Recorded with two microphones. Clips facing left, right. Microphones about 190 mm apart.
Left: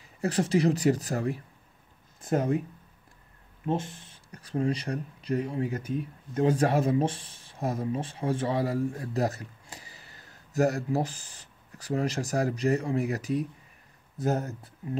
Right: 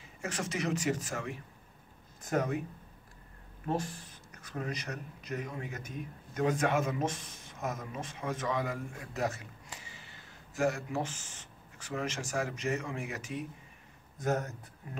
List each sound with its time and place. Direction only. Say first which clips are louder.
0.2 s speech: left 10 dB; 35° left (ahead or behind)
3.6 s speech: left 4 dB; 25° left (ahead or behind)